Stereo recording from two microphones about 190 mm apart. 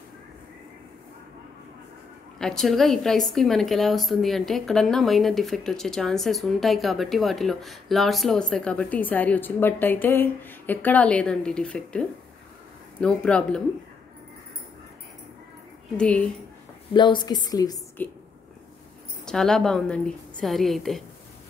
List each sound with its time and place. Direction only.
2.3 s a woman's voice: centre (ahead or behind)
16.0 s a woman's voice: 5° left (ahead or behind)
16.9 s a woman's voice: 25° left (ahead or behind)
19.2 s a woman's voice: 5° left (ahead or behind)